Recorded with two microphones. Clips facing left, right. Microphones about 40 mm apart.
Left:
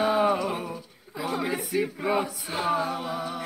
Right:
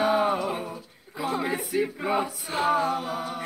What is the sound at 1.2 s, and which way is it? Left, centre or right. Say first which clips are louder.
Speech: right 1 dB; centre.